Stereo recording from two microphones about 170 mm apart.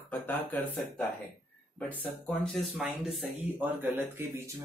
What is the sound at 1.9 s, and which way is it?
Speech, 5° left (ahead or behind).